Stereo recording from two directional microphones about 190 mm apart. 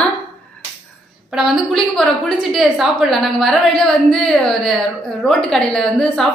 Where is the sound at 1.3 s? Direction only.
Centre (ahead or behind).